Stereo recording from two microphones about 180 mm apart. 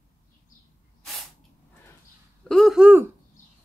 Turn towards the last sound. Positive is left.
turn(degrees=-10)  # may be behind; listen again after turning